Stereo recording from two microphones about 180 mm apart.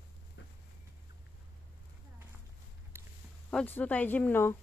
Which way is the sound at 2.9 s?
15° right (ahead or behind).